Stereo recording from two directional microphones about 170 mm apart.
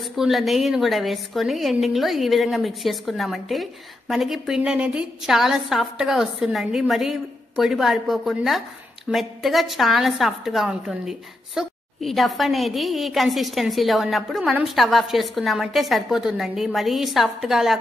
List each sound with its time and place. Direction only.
0.0 s a woman's voice: centre (ahead or behind)